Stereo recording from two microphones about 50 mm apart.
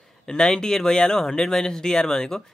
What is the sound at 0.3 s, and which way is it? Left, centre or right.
Speech, centre.